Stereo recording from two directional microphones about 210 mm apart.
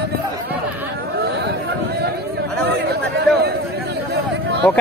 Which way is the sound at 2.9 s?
50° right (ahead or behind).